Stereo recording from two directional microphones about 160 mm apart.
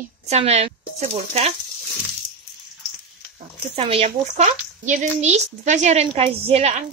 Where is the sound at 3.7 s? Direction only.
40° right (ahead or behind).